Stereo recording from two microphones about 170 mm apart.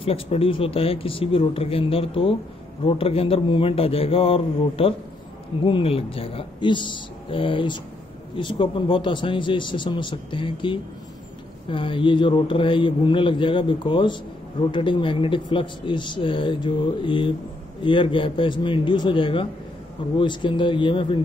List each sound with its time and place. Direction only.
0.0 s speech: 35° left (ahead or behind)